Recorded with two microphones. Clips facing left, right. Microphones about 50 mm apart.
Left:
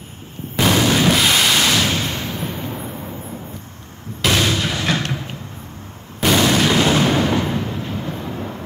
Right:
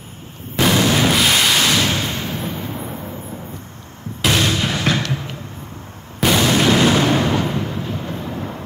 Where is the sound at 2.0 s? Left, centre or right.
Right.